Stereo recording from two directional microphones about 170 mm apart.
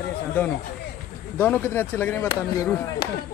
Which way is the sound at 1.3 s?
10° left (ahead or behind).